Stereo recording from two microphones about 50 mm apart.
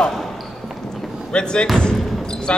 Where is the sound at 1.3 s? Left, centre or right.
Centre.